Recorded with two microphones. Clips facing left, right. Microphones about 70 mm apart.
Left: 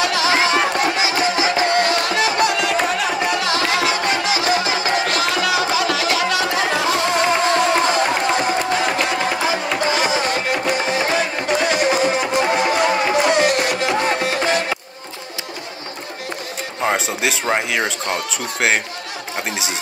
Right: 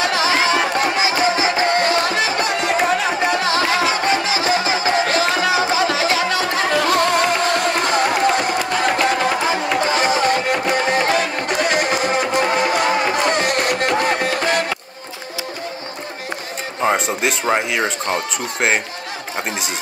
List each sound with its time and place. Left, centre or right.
0.0 s music: right
9.9 s music: right
17.6 s speech: centre